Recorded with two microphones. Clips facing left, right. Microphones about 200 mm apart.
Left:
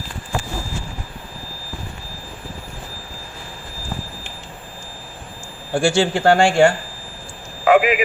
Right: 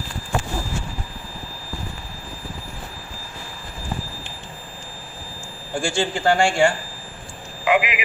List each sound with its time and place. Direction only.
5.7 s a man's voice: 70° left (ahead or behind)
7.6 s vehicle: 40° left (ahead or behind)